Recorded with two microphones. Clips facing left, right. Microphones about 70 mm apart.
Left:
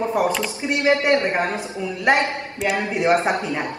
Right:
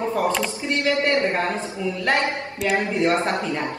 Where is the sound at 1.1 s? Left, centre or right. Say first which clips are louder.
Left 2 dB; left.